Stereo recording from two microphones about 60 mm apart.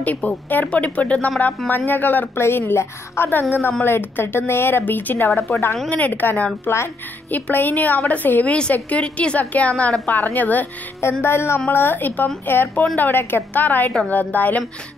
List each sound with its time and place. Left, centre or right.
0.0 s a woman's voice: left
11.0 s a woman's voice: left